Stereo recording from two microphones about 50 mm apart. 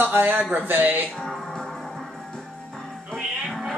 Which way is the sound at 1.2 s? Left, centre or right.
Centre.